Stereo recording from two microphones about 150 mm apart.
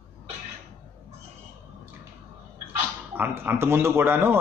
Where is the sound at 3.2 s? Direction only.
15° right (ahead or behind).